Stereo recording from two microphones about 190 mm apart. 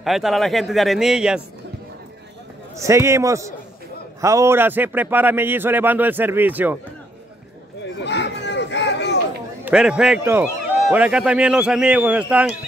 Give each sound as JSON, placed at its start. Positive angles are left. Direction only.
{"t": 0.0, "sound": "a man's voice", "side_deg": 0}
{"t": 2.8, "sound": "a man's voice", "side_deg": -15}
{"t": 8.0, "sound": "a sound", "side_deg": 65}
{"t": 9.7, "sound": "a man's voice", "side_deg": -5}